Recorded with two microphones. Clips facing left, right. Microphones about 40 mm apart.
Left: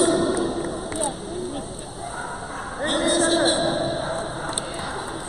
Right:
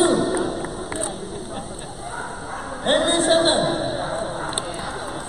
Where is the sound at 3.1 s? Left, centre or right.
Right.